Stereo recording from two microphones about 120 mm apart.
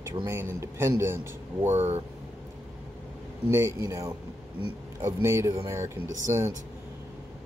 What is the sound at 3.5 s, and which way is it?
Speech, 20° right (ahead or behind).